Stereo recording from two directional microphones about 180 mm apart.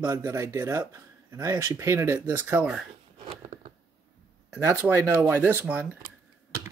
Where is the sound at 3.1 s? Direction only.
30° right (ahead or behind).